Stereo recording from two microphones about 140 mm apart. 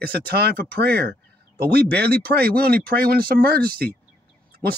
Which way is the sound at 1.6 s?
90° right.